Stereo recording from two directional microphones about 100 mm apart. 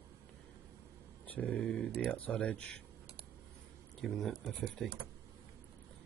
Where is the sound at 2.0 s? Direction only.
10° left (ahead or behind).